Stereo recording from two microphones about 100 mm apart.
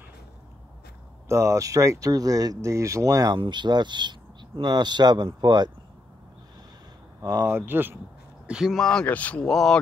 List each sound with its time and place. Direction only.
1.3 s speech: 30° right (ahead or behind)
3.3 s speech: 50° right (ahead or behind)
7.2 s speech: 30° right (ahead or behind)
8.5 s speech: 5° right (ahead or behind)
8.7 s speech: 5° left (ahead or behind)